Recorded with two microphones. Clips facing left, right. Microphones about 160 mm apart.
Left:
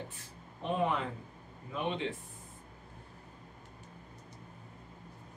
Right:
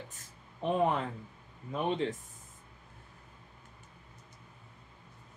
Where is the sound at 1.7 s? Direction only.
40° right (ahead or behind).